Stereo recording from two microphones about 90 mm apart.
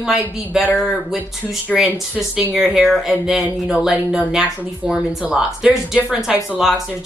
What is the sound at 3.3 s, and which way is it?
Speech, 5° right (ahead or behind).